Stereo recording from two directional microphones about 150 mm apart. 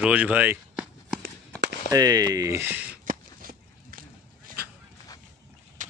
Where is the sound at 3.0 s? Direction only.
70° right (ahead or behind).